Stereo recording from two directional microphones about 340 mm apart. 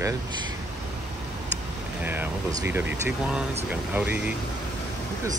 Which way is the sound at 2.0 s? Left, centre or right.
Centre.